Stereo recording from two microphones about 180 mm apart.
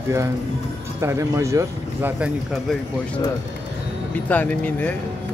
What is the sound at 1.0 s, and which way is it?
Speech, 15° right (ahead or behind).